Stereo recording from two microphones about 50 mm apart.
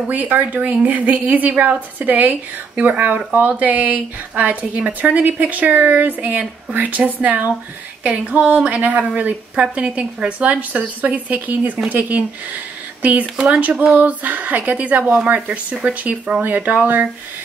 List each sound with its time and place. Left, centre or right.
0.1 s a woman's voice: right